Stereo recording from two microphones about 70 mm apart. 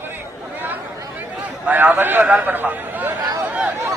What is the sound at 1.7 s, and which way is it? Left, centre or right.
Speech, right.